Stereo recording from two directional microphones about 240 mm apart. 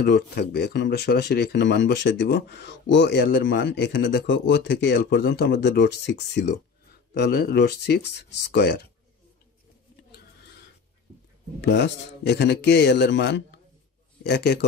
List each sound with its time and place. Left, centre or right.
0.0 s speech: left
11.6 s speech: left